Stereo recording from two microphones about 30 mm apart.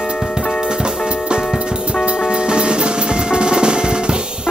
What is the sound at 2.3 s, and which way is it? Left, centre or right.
Music, right.